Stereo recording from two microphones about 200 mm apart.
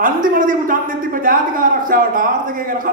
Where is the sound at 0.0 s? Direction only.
45° right (ahead or behind).